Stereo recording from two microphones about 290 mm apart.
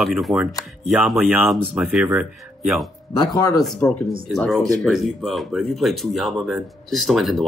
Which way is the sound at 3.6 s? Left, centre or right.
Centre.